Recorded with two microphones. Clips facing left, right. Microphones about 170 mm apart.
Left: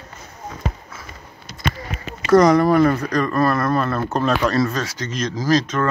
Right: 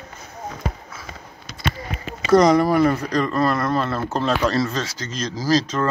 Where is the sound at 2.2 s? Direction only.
20° right (ahead or behind).